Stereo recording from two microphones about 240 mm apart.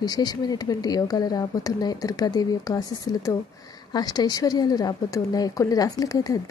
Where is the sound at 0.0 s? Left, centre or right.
Centre.